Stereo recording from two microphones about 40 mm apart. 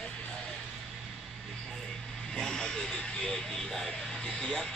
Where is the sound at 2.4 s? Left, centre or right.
Centre.